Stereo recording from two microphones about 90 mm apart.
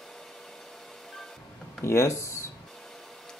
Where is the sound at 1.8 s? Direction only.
30° left (ahead or behind).